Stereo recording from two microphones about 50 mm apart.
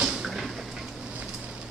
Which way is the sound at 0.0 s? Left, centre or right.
Centre.